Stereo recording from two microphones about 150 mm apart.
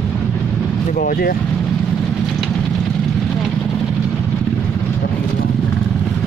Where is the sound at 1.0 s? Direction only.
75° left (ahead or behind).